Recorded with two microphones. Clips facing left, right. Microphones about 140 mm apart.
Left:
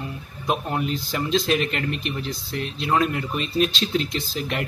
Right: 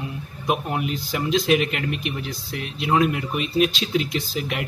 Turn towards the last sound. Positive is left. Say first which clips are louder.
# right 1 dB
turn(degrees=-10)  # may be behind; listen again after turning